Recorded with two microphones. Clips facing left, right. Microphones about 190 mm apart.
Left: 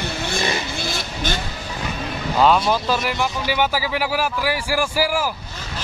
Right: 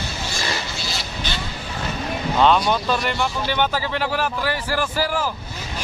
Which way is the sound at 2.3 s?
5° left (ahead or behind).